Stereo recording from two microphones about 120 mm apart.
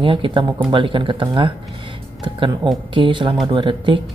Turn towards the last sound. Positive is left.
turn(degrees=-45)  # may be behind; listen again after turning